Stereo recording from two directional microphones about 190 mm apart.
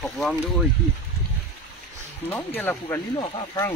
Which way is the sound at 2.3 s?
10° left (ahead or behind).